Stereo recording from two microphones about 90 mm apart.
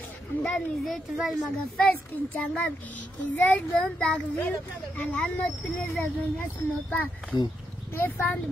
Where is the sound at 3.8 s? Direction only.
10° left (ahead or behind).